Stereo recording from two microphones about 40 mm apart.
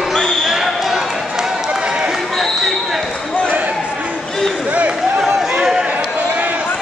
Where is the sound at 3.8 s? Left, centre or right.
Right.